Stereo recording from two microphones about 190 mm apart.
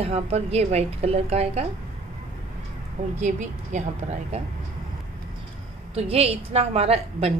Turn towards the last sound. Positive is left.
turn(degrees=-30)  # may be behind; listen again after turning